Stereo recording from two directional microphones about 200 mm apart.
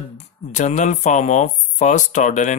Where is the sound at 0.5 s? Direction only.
35° left (ahead or behind).